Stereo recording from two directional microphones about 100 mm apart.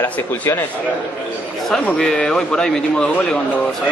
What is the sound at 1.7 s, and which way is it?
A man's voice, 10° left (ahead or behind).